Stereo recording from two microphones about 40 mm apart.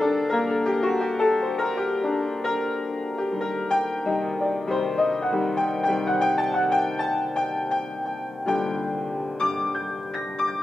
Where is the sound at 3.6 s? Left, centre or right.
Centre.